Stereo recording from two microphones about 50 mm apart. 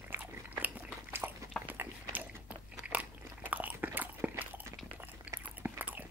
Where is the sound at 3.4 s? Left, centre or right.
Right.